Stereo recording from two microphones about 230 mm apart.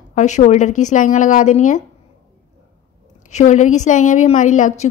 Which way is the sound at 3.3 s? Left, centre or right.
Left.